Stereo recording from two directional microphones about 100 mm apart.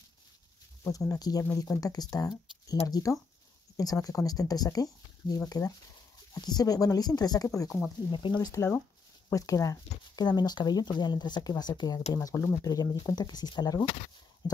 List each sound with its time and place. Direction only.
0.9 s speech: 35° left (ahead or behind)
8.1 s speech: 50° left (ahead or behind); by 12.6 s 25° left (ahead or behind)
12.6 s speech: 40° left (ahead or behind)